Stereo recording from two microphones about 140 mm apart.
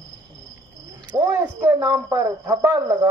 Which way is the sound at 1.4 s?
20° right (ahead or behind).